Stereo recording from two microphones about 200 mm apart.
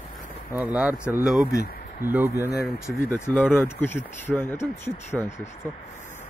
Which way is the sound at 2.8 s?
15° left (ahead or behind).